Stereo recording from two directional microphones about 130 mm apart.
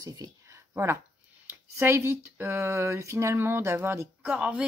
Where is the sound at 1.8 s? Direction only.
20° right (ahead or behind).